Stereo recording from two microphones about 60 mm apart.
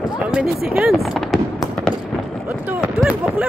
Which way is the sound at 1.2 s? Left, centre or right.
Centre.